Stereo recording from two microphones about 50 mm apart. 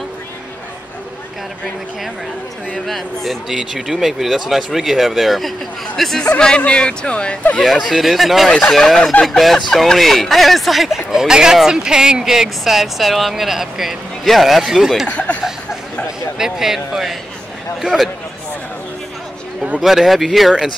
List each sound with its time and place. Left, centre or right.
2.9 s speech: centre
6.2 s speech: centre
7.6 s speech: centre
8.5 s speech: centre
15.0 s speech: left
16.3 s speech: centre
19.8 s speech: centre